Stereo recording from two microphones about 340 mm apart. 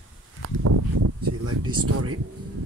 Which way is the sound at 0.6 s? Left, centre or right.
Right.